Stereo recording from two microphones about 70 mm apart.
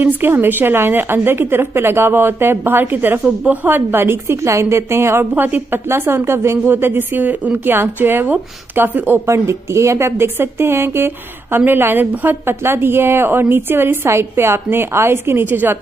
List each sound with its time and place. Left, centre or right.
0.0 s a woman's voice: right
5.3 s a woman's voice: right